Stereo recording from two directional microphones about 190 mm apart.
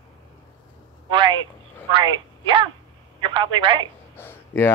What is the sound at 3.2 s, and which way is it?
Speech, 25° right (ahead or behind).